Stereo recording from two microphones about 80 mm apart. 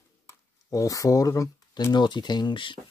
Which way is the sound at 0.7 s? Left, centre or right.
Left.